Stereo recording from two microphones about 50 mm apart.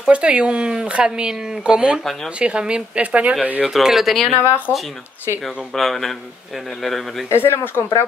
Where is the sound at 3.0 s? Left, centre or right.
Right.